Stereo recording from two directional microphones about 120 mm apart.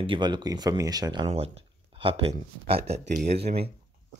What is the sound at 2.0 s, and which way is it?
Speech, 55° right (ahead or behind).